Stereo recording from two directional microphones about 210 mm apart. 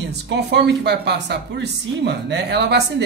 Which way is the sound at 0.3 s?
55° right (ahead or behind).